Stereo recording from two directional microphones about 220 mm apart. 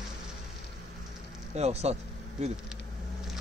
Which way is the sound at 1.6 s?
30° right (ahead or behind).